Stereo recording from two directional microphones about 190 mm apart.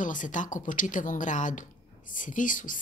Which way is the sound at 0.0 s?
45° left (ahead or behind).